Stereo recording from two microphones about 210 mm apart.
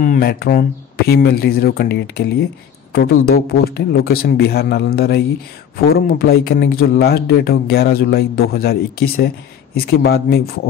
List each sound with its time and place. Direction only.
0.0 s speech: 45° left (ahead or behind)